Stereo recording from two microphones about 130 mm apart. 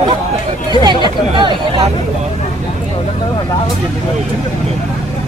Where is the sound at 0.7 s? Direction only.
35° right (ahead or behind).